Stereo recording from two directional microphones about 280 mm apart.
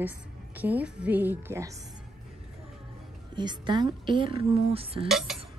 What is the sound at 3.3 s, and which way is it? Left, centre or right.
A woman's voice, centre.